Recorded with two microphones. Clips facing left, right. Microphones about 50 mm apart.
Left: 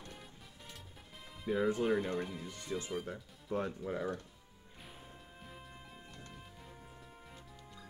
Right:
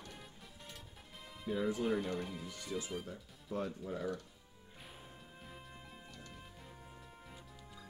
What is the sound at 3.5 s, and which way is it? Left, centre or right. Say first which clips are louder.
Speech: left 3 dB; left.